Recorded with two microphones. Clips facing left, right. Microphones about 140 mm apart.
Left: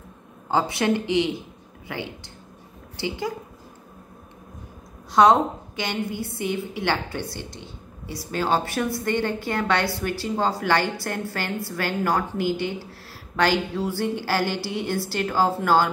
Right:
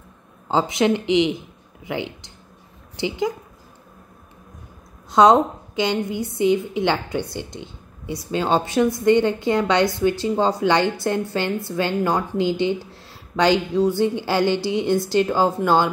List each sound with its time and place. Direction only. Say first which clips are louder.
0.5 s a woman's voice: right 3 dB; 20° right (ahead or behind)
5.1 s a woman's voice: right 3 dB; 20° right (ahead or behind)